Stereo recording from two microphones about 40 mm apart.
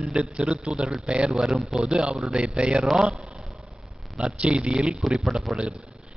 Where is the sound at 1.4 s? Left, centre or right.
Centre.